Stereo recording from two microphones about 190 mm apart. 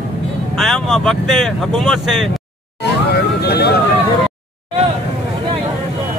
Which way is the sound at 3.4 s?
55° left (ahead or behind).